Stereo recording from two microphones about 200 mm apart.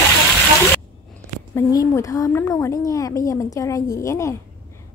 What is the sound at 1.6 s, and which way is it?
A woman's voice, 15° left (ahead or behind).